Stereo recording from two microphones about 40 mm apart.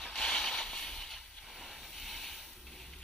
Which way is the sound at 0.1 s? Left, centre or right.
Centre.